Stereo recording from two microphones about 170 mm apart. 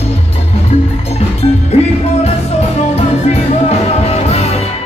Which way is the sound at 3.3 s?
35° left (ahead or behind).